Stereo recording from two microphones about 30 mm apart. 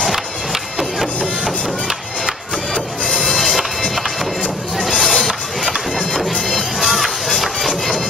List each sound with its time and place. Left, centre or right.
0.1 s printer: centre
3.3 s music: centre
4.8 s music: centre
6.8 s music: centre